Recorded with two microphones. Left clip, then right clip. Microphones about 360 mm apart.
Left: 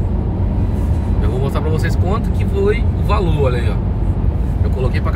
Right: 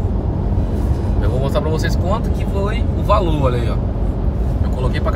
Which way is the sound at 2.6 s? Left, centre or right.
Right.